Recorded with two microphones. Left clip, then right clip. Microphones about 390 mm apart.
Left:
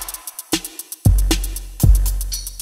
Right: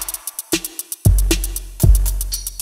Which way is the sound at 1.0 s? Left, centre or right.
Centre.